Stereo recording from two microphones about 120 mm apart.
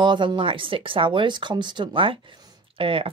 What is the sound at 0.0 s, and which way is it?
Speech, 40° right (ahead or behind).